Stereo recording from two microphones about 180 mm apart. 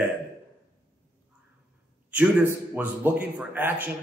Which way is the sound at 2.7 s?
10° right (ahead or behind).